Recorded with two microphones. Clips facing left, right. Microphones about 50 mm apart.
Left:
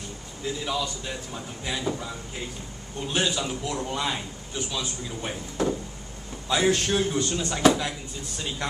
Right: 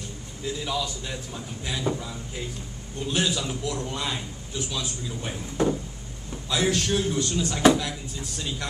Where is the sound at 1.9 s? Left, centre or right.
Right.